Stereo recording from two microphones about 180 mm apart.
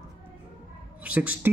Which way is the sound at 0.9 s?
10° right (ahead or behind).